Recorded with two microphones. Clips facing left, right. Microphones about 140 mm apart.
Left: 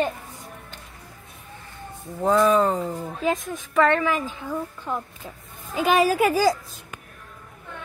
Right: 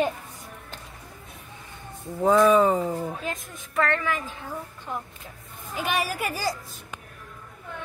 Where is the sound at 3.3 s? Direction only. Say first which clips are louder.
Left 9 dB; 90° left.